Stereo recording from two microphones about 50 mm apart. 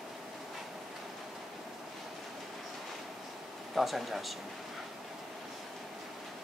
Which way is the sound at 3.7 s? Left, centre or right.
Centre.